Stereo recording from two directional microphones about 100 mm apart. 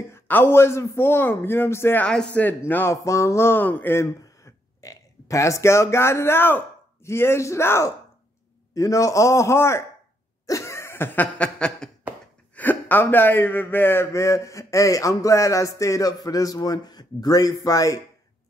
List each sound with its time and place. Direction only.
0.1 s a man's voice: 20° left (ahead or behind)
2.0 s a man's voice: 10° left (ahead or behind)
2.6 s a man's voice: 25° left (ahead or behind)
4.2 s a sound: 35° left (ahead or behind)
7.1 s a man's voice: 25° left (ahead or behind)
10.4 s a sound: 30° left (ahead or behind); by 11.9 s 10° left (ahead or behind)
12.5 s a man's voice: 20° left (ahead or behind); by 18.0 s 35° left (ahead or behind)